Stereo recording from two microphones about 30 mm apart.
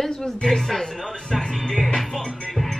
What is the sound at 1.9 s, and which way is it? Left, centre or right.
Music, centre.